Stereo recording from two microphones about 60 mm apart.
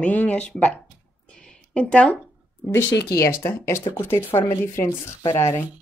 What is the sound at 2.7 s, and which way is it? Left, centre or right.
Speech, left.